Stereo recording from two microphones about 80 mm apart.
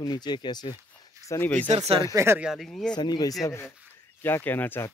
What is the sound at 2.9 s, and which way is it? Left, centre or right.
Speech, left.